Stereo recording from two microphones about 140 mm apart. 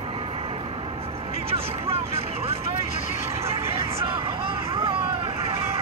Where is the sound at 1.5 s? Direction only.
45° right (ahead or behind).